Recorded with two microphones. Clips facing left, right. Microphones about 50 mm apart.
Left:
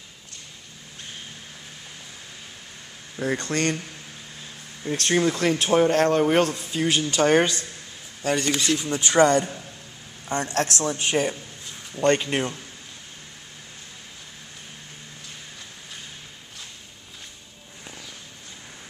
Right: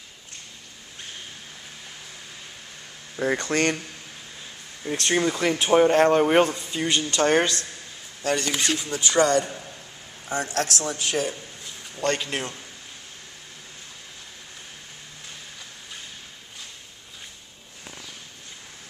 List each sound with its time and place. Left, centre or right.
3.2 s speech: right
4.8 s speech: centre
6.5 s speech: centre
8.8 s speech: left
10.4 s speech: left
12.0 s speech: left